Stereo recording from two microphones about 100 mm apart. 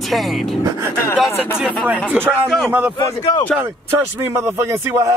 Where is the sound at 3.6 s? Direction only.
25° right (ahead or behind).